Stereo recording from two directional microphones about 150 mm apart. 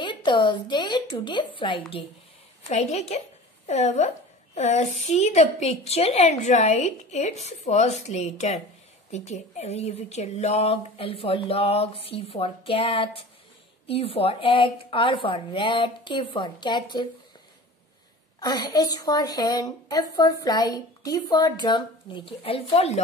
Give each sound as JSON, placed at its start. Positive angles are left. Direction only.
{"t": 0.0, "sound": "speech", "side_deg": 30}
{"t": 2.7, "sound": "a woman's voice", "side_deg": 45}
{"t": 18.4, "sound": "a woman's voice", "side_deg": 25}